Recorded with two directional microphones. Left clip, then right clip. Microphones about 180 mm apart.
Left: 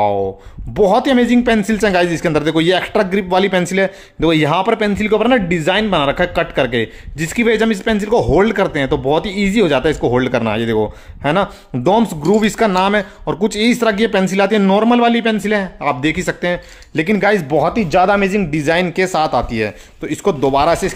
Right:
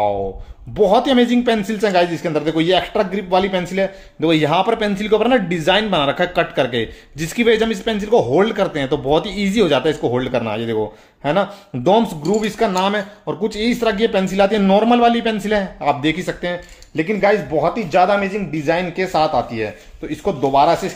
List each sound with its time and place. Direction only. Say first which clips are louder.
0.7 s speech: left 1 dB; 35° left (ahead or behind)
16.9 s speech: left 2 dB; 50° left (ahead or behind)